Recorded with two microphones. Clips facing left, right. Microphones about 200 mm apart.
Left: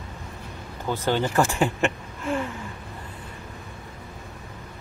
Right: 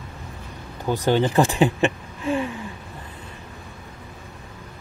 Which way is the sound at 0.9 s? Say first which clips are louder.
Right 4 dB; 15° right (ahead or behind).